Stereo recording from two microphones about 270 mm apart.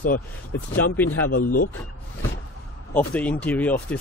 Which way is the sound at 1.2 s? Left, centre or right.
Left.